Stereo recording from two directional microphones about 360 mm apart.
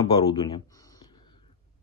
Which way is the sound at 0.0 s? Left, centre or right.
Centre.